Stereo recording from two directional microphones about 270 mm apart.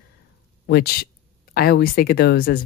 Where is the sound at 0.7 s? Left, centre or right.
Left.